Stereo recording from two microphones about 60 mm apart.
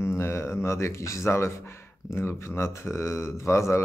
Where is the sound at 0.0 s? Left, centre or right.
Left.